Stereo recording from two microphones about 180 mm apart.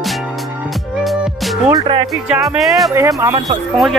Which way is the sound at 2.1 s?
Centre (ahead or behind).